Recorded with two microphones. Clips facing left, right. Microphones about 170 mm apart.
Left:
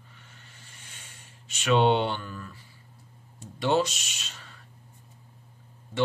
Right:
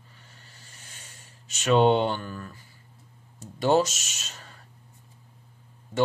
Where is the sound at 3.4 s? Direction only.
40° right (ahead or behind).